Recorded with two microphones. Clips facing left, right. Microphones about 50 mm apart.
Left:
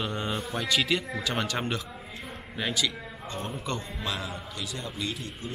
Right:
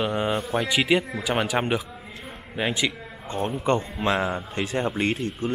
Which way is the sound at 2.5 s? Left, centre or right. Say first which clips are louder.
Right 4 dB; right.